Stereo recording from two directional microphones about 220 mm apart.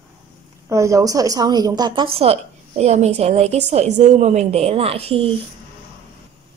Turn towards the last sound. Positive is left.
turn(degrees=-25)  # may be behind; listen again after turning